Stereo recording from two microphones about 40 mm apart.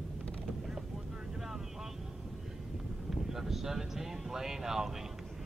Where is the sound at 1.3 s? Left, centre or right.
Centre.